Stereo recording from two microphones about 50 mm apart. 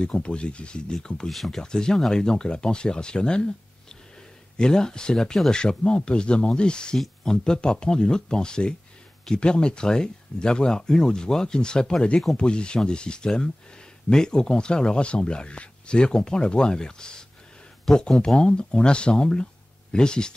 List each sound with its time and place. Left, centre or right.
0.0 s speech: left; by 1.6 s centre
1.6 s speech: centre
4.6 s speech: centre